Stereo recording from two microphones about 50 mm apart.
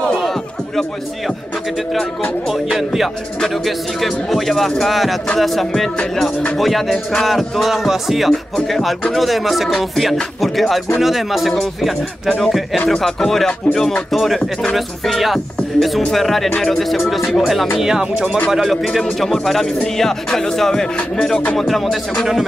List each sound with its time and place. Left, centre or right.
0.2 s music: centre
2.4 s speech: centre
16.4 s speech: centre
16.7 s speech: centre
18.5 s speech: centre
20.0 s music: centre
21.5 s speech: centre